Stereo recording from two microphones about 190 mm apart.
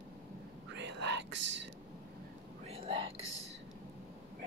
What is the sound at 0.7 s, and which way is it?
Whispering, 65° right (ahead or behind).